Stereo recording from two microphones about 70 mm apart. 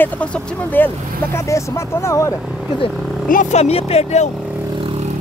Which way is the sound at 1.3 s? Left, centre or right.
Left.